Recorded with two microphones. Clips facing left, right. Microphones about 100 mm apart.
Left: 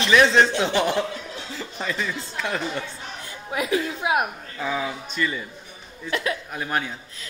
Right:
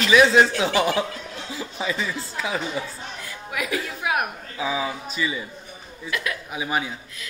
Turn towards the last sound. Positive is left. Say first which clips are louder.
# right 1 dB
turn(degrees=-5)  # may be behind; listen again after turning